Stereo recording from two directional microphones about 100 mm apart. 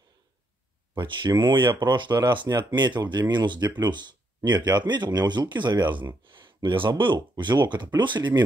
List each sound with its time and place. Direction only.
0.9 s speech: 50° right (ahead or behind)